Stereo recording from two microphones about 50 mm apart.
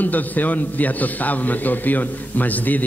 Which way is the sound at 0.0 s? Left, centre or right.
Left.